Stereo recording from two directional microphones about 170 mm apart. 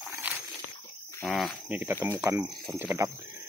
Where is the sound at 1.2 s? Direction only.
Centre (ahead or behind).